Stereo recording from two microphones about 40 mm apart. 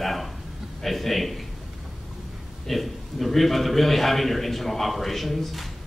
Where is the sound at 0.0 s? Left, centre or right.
Centre.